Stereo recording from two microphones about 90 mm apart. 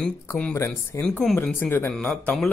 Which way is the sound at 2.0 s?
15° left (ahead or behind).